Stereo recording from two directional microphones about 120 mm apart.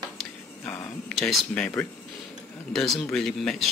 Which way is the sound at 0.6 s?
15° left (ahead or behind).